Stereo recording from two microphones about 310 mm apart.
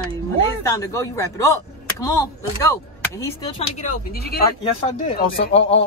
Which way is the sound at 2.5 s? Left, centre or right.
Centre.